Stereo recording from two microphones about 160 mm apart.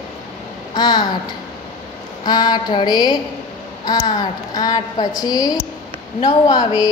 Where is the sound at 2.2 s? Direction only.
25° left (ahead or behind).